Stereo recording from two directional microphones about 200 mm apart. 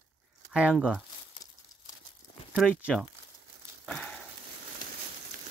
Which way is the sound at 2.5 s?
Centre (ahead or behind).